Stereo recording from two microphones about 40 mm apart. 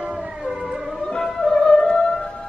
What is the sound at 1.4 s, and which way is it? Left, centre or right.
Music, centre.